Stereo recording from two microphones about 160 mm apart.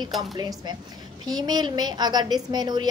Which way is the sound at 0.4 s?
25° right (ahead or behind).